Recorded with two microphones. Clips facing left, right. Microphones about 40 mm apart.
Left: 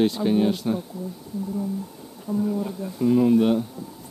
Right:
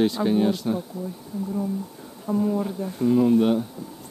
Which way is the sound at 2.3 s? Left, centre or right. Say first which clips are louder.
Right 2 dB; right.